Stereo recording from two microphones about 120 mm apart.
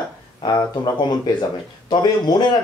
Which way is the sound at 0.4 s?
35° left (ahead or behind).